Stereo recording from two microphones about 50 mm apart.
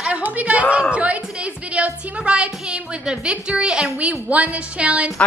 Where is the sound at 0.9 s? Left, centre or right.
Right.